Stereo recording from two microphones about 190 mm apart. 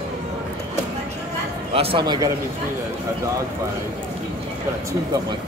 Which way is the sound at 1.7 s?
30° right (ahead or behind).